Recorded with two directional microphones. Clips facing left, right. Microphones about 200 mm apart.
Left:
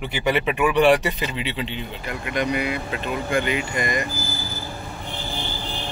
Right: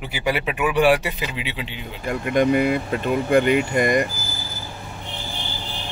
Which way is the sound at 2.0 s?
45° right (ahead or behind).